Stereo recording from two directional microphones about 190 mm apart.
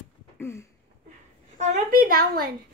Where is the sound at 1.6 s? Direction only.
40° right (ahead or behind).